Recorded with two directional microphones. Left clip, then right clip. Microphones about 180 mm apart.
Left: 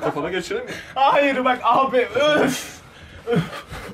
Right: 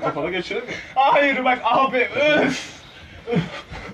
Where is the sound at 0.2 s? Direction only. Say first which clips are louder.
Even; 25° left (ahead or behind).